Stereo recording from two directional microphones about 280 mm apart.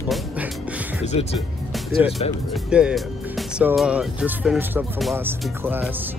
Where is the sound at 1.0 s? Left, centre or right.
Left.